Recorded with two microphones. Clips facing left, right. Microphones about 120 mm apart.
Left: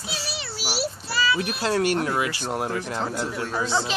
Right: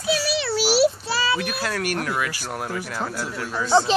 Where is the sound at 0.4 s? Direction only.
90° right.